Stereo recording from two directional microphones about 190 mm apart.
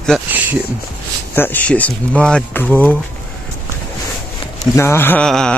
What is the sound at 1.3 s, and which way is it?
Speech, 10° left (ahead or behind).